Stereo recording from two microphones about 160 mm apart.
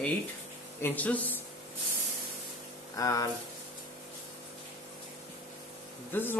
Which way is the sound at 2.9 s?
20° left (ahead or behind).